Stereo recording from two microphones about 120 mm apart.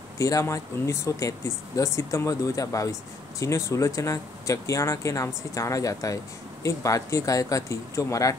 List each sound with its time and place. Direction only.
0.2 s speech: 25° left (ahead or behind)